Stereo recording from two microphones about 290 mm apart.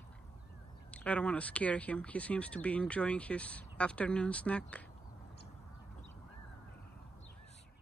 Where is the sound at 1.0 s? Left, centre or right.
Centre.